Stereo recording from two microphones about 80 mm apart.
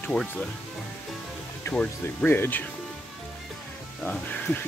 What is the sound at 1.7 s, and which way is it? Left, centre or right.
Speech, left.